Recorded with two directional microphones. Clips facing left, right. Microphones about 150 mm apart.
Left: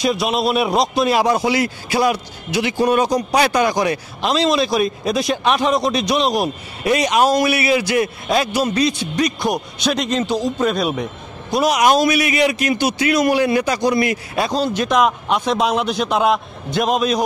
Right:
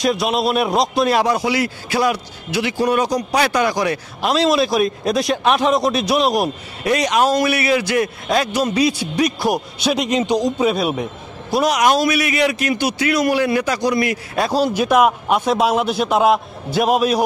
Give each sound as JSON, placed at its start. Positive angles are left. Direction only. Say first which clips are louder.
{"t": 0.0, "sound": "a man's voice", "louder": "even", "side_deg": 0}
{"t": 1.2, "sound": "a man's voice", "louder": "left 1 dB", "side_deg": 25}
{"t": 4.2, "sound": "a man's voice", "louder": "right 1 dB", "side_deg": -5}
{"t": 6.8, "sound": "a man's voice", "louder": "left 1 dB", "side_deg": 10}
{"t": 8.7, "sound": "a man's voice", "louder": "right 1 dB", "side_deg": -10}
{"t": 11.6, "sound": "a man's voice", "louder": "left 1 dB", "side_deg": 15}
{"t": 14.5, "sound": "a man's voice", "louder": "right 3 dB", "side_deg": -10}